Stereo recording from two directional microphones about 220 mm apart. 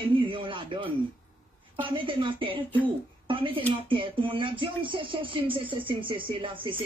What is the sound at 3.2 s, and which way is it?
Speech, 25° right (ahead or behind).